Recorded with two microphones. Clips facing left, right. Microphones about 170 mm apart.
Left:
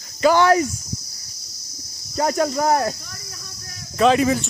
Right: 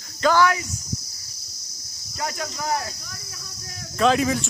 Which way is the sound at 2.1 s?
45° left (ahead or behind).